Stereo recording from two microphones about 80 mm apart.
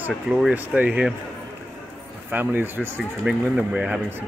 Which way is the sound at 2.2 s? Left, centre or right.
Right.